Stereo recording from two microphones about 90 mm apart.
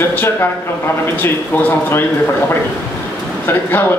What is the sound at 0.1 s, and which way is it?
Speech, 25° left (ahead or behind).